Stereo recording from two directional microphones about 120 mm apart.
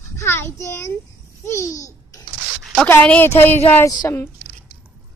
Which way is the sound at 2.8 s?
15° left (ahead or behind).